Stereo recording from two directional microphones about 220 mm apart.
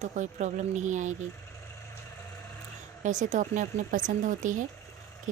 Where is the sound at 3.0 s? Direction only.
35° right (ahead or behind).